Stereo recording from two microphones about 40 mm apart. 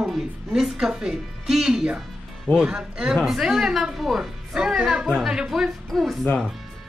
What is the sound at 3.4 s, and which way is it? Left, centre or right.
A woman's voice, centre.